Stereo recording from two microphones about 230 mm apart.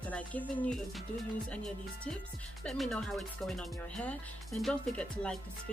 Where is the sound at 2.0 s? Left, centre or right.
Centre.